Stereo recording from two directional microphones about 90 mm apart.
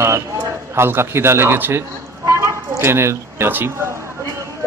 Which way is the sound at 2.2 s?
35° right (ahead or behind).